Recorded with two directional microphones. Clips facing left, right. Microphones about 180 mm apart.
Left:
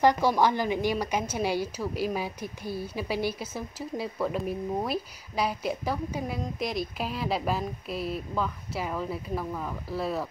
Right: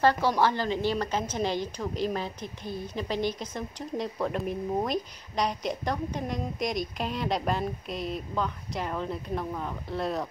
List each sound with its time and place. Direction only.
0.0 s a woman's voice: 15° left (ahead or behind)